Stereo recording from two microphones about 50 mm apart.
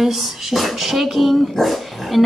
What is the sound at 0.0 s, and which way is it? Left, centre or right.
A woman's voice, centre.